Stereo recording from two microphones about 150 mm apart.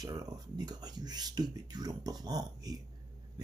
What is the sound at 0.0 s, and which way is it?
Speech, 25° right (ahead or behind).